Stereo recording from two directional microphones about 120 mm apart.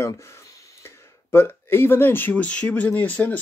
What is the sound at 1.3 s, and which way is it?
Speech, 20° left (ahead or behind).